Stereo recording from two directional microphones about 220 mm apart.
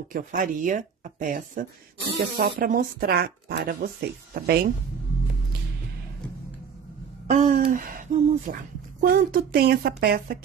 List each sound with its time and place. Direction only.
0.1 s speech: 40° right (ahead or behind)
7.2 s a sound: 35° right (ahead or behind)
9.0 s speech: 45° right (ahead or behind)